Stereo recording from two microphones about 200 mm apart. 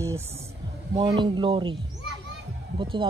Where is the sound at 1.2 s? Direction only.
25° right (ahead or behind).